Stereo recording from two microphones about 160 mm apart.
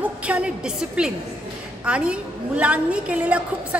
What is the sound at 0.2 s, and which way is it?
A woman's voice, 5° right (ahead or behind).